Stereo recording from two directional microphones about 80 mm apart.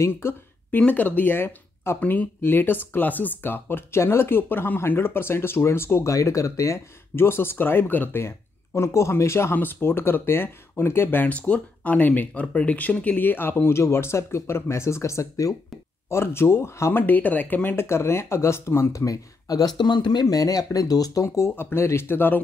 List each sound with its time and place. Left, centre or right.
0.0 s speech: left
0.7 s speech: centre; by 17.0 s left
17.0 s speech: left
17.8 s speech: left
21.5 s speech: left